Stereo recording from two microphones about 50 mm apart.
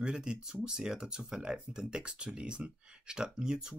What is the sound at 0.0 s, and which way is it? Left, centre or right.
Speech, centre.